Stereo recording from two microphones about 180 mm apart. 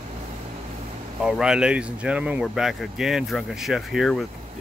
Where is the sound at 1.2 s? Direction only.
5° right (ahead or behind).